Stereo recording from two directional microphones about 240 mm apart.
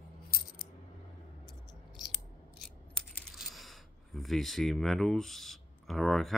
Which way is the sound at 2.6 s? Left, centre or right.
Centre.